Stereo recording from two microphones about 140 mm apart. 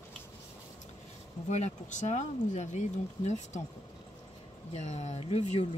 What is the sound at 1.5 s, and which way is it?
Speech, 55° left (ahead or behind).